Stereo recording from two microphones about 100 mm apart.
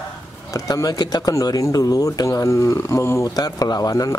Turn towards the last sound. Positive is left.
turn(degrees=35)  # may be behind; listen again after turning